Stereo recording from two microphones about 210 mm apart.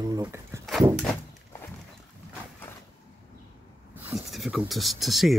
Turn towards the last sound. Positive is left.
turn(degrees=0)  # may be behind; listen again after turning